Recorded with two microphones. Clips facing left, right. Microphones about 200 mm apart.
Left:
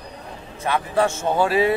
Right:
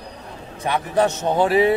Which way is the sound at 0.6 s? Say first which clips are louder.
Right 1 dB; 15° right (ahead or behind).